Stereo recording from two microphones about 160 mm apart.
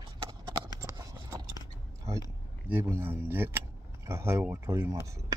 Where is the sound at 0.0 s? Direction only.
25° right (ahead or behind).